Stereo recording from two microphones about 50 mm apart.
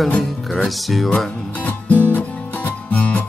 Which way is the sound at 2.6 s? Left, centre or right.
Left.